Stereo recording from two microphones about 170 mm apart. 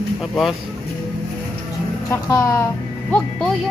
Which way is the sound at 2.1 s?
20° left (ahead or behind).